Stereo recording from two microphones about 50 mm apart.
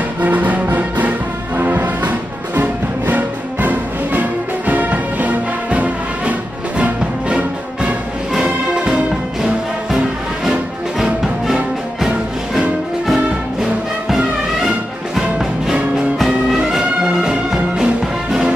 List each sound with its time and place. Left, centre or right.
0.2 s music: right; by 9.0 s centre
12.5 s music: centre